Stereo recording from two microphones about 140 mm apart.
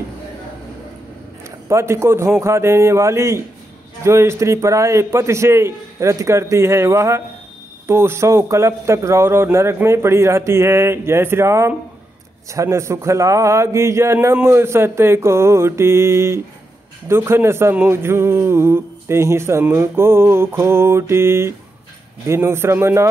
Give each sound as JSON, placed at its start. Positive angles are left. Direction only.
{"t": 1.7, "sound": "a man's voice", "side_deg": -20}